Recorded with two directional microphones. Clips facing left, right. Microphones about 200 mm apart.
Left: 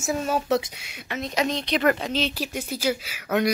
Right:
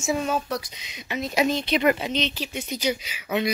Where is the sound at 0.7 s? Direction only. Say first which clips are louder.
Left 1 dB; 10° left (ahead or behind).